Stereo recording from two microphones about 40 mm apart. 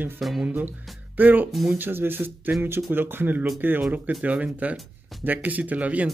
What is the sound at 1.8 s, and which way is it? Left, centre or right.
Speech, right.